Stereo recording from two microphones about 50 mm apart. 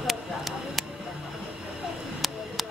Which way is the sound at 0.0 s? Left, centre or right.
Centre.